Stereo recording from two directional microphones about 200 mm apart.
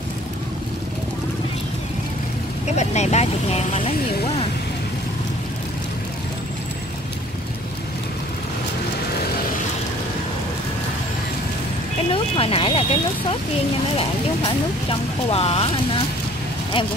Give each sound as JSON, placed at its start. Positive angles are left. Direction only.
{"t": 2.7, "sound": "speech", "side_deg": 35}
{"t": 12.1, "sound": "speech", "side_deg": 25}